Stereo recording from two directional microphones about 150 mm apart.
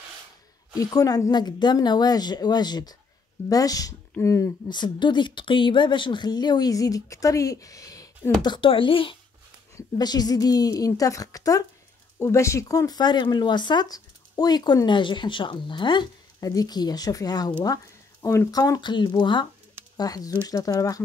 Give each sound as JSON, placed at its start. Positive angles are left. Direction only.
{"t": 0.7, "sound": "speech", "side_deg": 25}